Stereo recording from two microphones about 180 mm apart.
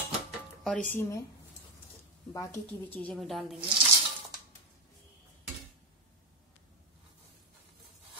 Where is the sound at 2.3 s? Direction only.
20° left (ahead or behind).